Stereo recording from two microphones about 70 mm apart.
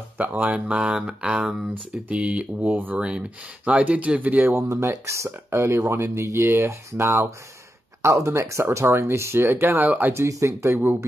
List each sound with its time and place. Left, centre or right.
0.2 s speech: right
1.7 s speech: right
4.5 s speech: right
10.1 s speech: right
10.7 s speech: right